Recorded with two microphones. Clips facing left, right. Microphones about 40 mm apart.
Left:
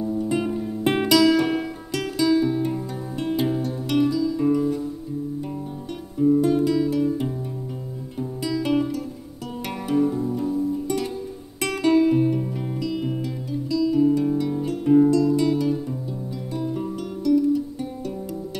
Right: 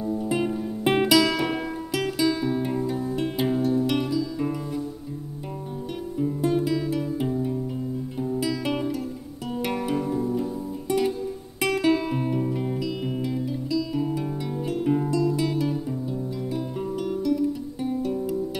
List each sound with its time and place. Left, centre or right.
0.0 s music: centre
6.4 s guitar: centre
9.7 s music: centre